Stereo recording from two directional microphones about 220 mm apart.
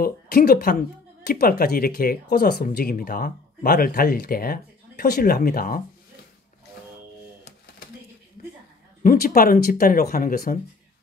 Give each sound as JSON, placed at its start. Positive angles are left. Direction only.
{"t": 0.0, "sound": "speech", "side_deg": 45}
{"t": 9.0, "sound": "speech", "side_deg": 40}